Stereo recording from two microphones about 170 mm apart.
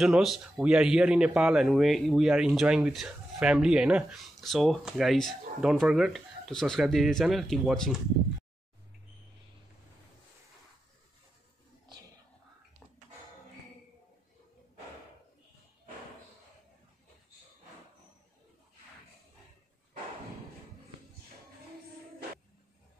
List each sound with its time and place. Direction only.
0.0 s speech: centre (ahead or behind)